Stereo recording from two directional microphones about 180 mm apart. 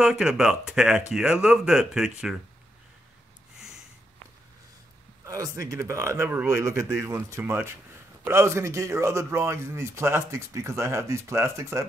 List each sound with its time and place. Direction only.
0.0 s speech: 5° right (ahead or behind)
5.2 s a man's voice: 20° right (ahead or behind)